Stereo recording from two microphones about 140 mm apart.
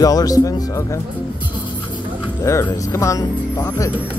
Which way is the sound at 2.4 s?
20° left (ahead or behind).